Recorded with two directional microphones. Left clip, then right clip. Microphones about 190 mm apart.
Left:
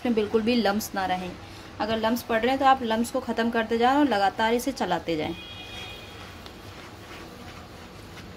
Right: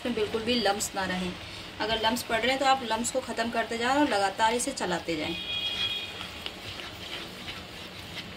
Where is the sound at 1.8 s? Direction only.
45° left (ahead or behind).